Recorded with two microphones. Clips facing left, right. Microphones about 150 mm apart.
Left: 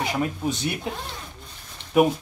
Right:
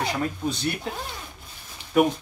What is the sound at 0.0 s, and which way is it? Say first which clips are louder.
Speech: left 1 dB; 5° left (ahead or behind).